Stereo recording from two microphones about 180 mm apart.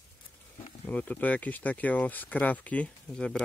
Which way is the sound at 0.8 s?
10° left (ahead or behind).